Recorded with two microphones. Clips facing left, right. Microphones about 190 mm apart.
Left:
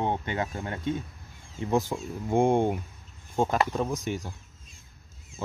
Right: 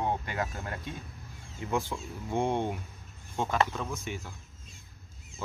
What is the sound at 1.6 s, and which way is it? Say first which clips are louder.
Speech: left 5 dB; 40° left (ahead or behind).